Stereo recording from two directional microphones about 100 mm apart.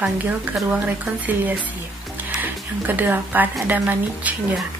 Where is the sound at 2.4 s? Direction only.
20° right (ahead or behind).